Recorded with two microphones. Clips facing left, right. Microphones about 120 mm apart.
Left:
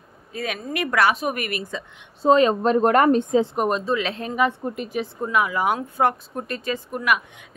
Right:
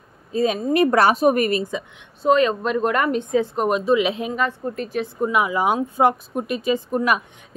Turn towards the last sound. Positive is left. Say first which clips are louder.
# right 3 dB
turn(degrees=-30)  # may be behind; listen again after turning